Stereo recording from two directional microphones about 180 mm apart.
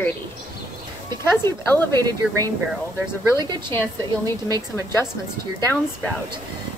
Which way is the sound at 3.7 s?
15° left (ahead or behind).